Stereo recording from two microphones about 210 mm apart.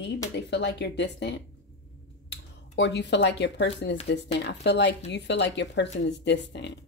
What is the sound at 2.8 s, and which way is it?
Speech, 55° left (ahead or behind).